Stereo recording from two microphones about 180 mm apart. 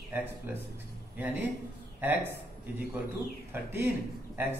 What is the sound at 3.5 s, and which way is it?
Speech, 10° right (ahead or behind).